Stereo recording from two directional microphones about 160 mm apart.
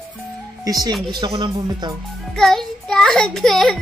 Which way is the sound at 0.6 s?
25° right (ahead or behind).